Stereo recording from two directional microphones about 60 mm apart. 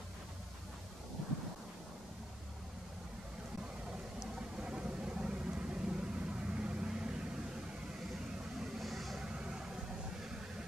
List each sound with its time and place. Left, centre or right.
4.6 s vehicle: centre
8.5 s vehicle: centre
9.2 s vehicle: centre